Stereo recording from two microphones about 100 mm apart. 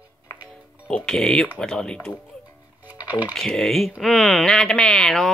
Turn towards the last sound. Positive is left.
turn(degrees=5)  # may be behind; listen again after turning